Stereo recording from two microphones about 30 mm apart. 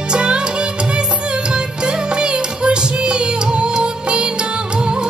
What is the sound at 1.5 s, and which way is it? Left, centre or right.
Music, right.